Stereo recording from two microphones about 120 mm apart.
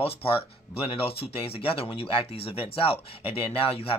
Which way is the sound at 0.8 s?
50° left (ahead or behind).